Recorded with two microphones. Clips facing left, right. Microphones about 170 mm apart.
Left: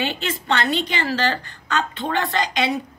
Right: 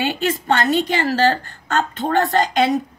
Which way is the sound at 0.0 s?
45° right (ahead or behind).